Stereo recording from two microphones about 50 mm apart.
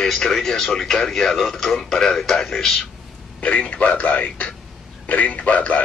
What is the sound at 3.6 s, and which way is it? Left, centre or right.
Speech, left.